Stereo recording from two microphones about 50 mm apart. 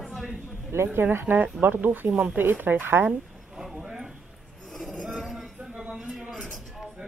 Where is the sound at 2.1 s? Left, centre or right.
Centre.